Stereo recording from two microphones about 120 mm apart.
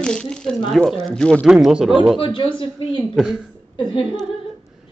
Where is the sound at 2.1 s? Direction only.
50° left (ahead or behind).